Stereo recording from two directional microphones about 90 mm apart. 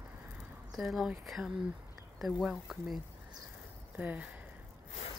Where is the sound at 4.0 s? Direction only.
15° right (ahead or behind).